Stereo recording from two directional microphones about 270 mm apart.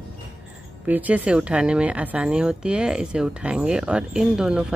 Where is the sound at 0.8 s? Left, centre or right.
Centre.